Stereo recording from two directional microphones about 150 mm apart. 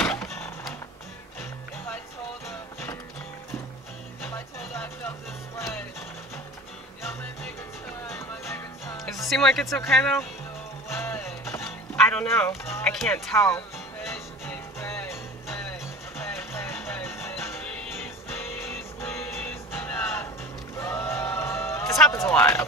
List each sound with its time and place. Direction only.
0.0 s power windows: 5° left (ahead or behind)
2.4 s music: 20° left (ahead or behind)
4.2 s music: 15° left (ahead or behind)
8.5 s music: 20° left (ahead or behind)
9.3 s speech: centre (ahead or behind)
10.9 s music: 15° left (ahead or behind)
13.3 s speech: 15° left (ahead or behind)
14.0 s music: 15° left (ahead or behind)
16.5 s music: 15° left (ahead or behind)
19.0 s music: 5° left (ahead or behind)
19.3 s music: 15° left (ahead or behind)
22.1 s speech: 15° left (ahead or behind)